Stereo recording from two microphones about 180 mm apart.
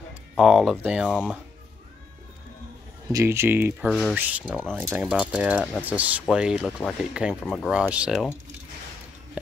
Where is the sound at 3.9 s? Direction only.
Centre (ahead or behind).